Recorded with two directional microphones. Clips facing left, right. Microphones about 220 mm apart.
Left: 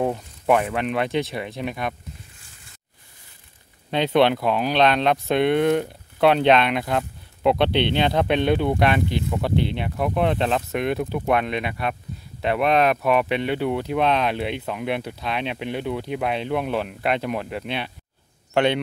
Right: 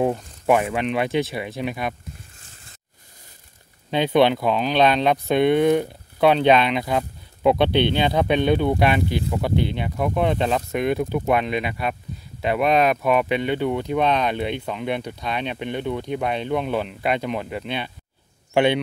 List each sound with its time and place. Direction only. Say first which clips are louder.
0.0 s speech: right 2 dB; 5° right (ahead or behind)
3.9 s speech: right 1 dB; centre (ahead or behind)